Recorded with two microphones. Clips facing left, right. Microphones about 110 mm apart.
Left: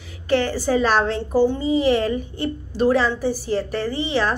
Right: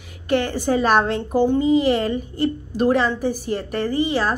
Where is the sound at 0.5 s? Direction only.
50° right (ahead or behind).